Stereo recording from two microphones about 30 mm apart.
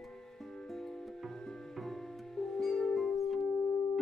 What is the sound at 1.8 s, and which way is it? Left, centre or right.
Music, centre.